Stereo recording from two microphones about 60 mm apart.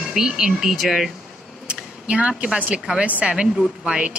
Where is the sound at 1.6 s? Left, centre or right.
Centre.